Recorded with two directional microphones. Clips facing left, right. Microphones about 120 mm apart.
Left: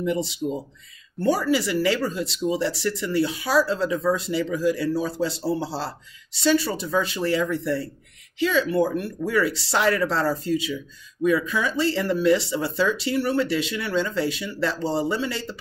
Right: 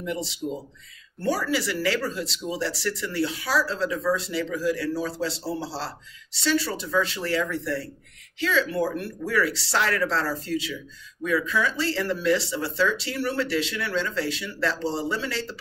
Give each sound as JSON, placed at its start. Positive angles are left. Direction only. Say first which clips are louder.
{"t": 0.0, "sound": "speech", "louder": "left 5 dB", "side_deg": 20}